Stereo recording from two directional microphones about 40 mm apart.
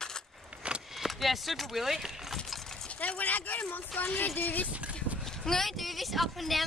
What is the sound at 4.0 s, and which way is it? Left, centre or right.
Speech, left.